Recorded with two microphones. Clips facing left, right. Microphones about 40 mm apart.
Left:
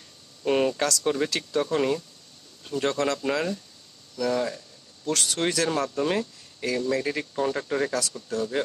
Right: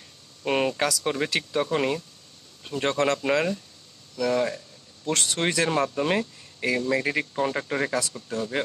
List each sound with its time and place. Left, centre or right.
0.4 s speech: centre
4.2 s a sound: centre
5.1 s speech: right